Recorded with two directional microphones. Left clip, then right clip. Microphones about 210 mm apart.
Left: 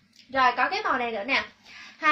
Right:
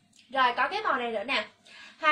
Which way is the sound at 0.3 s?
20° right (ahead or behind).